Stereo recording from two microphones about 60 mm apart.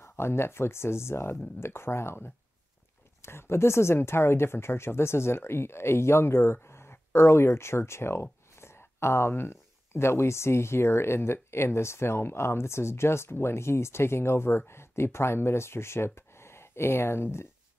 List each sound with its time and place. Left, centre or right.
0.0 s speech: left